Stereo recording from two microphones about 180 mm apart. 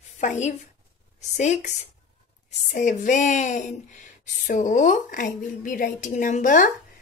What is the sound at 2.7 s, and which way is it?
Speech, 45° left (ahead or behind).